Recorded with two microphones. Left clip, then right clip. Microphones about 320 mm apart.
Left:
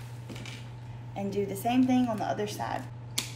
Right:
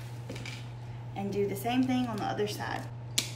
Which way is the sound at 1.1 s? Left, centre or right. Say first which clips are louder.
Even; left.